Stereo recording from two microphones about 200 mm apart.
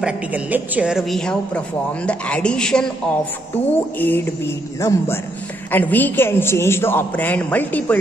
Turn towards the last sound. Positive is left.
turn(degrees=10)  # may be behind; listen again after turning